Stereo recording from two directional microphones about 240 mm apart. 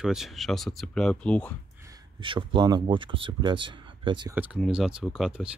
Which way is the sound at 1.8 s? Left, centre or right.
Right.